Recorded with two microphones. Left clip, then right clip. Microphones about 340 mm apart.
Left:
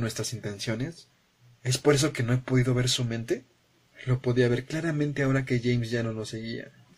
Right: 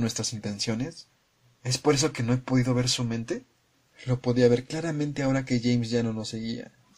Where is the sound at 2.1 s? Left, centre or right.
Centre.